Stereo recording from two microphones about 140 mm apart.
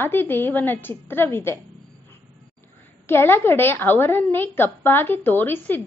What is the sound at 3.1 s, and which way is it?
A woman's voice, 15° left (ahead or behind).